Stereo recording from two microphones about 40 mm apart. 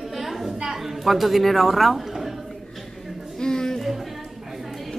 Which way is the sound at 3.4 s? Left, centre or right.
Centre.